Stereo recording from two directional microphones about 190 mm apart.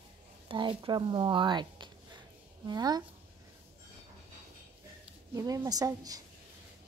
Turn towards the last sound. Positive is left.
turn(degrees=-20)  # may be behind; listen again after turning